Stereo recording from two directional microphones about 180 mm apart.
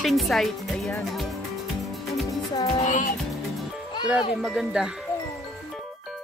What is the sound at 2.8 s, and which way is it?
Music, 45° left (ahead or behind).